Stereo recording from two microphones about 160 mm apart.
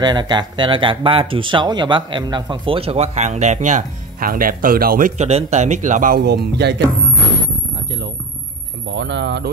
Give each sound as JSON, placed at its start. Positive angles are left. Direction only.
{"t": 0.0, "sound": "speech", "side_deg": -25}
{"t": 9.0, "sound": "speech", "side_deg": -90}